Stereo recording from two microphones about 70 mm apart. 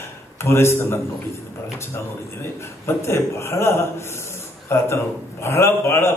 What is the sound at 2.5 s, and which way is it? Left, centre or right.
Speech, left.